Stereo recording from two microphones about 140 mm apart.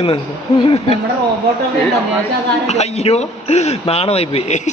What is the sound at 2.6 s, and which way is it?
A man's voice, 50° left (ahead or behind).